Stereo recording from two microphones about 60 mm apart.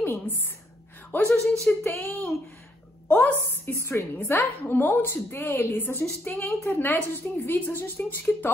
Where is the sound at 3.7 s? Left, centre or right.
Left.